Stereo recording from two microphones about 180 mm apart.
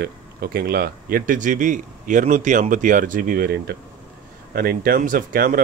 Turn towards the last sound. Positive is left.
turn(degrees=-50)  # may be behind; listen again after turning